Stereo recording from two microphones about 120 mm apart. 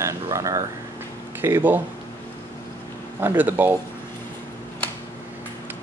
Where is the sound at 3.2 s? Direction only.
15° right (ahead or behind).